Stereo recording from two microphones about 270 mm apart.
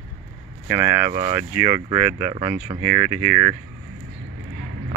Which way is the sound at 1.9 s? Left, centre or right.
Centre.